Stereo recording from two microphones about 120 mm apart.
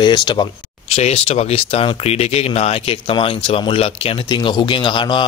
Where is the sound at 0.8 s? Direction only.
55° left (ahead or behind).